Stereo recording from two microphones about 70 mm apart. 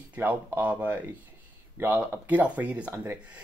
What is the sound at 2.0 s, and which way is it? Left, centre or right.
Speech, right.